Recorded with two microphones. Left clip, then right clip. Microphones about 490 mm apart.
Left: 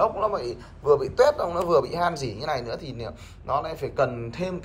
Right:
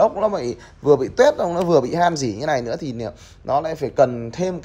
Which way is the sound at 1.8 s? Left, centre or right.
Centre.